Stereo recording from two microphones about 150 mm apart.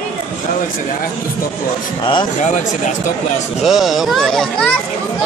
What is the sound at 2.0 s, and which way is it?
Speech, 30° left (ahead or behind).